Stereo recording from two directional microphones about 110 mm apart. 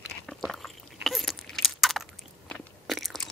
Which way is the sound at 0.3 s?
Centre (ahead or behind).